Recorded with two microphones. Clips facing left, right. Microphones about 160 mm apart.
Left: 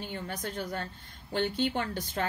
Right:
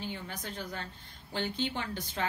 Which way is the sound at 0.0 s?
50° left (ahead or behind).